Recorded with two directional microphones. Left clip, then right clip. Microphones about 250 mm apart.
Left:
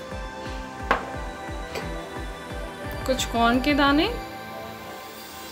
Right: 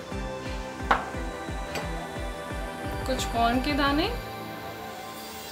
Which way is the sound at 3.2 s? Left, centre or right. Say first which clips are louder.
Left 3 dB; left.